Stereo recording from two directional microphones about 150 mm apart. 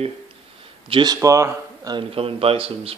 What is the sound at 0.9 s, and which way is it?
A man's voice, 30° right (ahead or behind).